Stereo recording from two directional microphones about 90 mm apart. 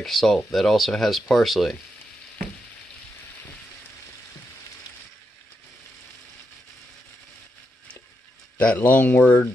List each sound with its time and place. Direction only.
0.0 s speech: centre (ahead or behind)
8.5 s speech: 15° left (ahead or behind)